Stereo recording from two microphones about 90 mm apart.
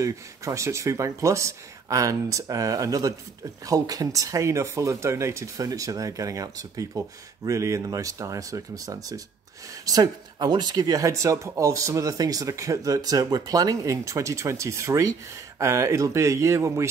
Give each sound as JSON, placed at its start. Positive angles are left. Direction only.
{"t": 0.0, "sound": "speech", "side_deg": -35}